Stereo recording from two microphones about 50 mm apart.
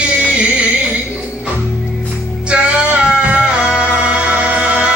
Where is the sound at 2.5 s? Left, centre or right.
Right.